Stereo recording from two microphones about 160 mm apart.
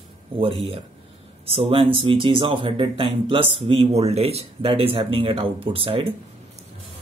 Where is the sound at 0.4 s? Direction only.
40° right (ahead or behind).